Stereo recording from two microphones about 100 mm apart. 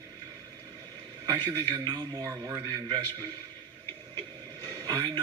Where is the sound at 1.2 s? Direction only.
40° right (ahead or behind).